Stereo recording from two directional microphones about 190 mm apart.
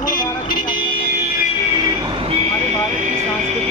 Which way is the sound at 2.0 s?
25° right (ahead or behind).